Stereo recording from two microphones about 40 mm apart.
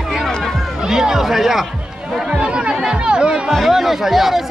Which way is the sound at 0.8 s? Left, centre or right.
Centre.